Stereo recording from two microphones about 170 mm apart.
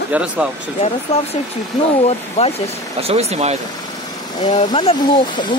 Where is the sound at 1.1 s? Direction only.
40° left (ahead or behind).